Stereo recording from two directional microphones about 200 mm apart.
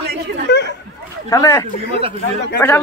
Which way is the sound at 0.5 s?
60° left (ahead or behind).